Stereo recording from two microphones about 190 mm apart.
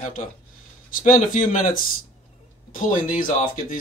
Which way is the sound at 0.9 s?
45° left (ahead or behind).